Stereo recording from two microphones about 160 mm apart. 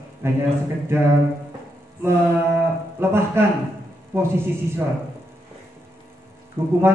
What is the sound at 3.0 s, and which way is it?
Speech, 15° right (ahead or behind).